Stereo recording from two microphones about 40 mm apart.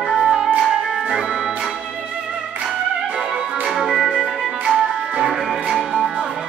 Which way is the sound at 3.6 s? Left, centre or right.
Centre.